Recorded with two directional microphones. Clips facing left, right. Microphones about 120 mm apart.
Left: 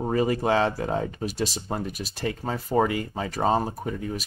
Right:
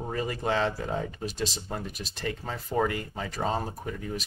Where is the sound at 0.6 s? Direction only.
50° left (ahead or behind).